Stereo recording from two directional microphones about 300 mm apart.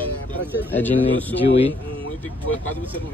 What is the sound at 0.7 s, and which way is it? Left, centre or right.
Speech, centre.